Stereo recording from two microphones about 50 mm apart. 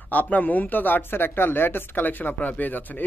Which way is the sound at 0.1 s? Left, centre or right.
Left.